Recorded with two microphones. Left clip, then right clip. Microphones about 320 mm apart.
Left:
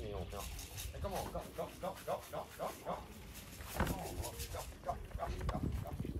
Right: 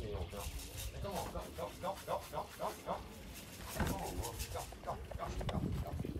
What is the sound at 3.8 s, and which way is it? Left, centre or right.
Speech, centre.